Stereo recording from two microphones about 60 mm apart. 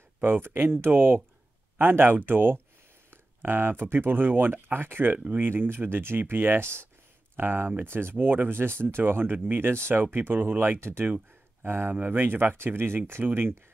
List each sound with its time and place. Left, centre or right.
0.2 s speech: right
5.1 s speech: right
5.5 s speech: right
10.8 s speech: right